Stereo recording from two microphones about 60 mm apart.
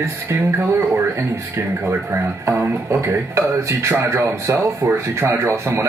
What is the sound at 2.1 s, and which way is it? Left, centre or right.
Speech, right.